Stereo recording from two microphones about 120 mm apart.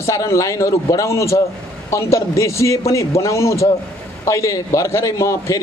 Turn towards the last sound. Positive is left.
turn(degrees=25)  # may be behind; listen again after turning